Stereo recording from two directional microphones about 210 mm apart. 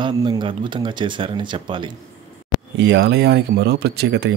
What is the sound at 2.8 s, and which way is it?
Speech, 55° right (ahead or behind).